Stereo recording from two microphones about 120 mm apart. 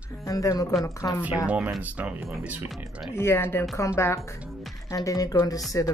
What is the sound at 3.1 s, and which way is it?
Speech, 20° left (ahead or behind).